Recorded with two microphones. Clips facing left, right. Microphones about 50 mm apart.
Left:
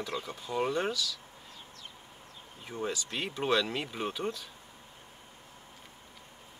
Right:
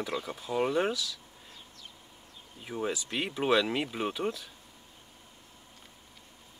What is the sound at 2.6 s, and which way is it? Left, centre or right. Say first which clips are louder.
Speech: right 2 dB; centre.